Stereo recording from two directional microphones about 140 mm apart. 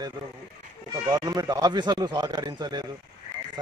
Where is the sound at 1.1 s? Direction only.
25° right (ahead or behind).